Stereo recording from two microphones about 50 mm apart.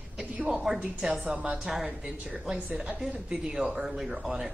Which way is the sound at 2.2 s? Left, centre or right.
Centre.